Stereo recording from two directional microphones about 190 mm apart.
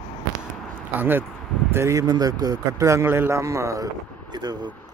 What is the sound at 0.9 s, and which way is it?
Speech, 10° right (ahead or behind).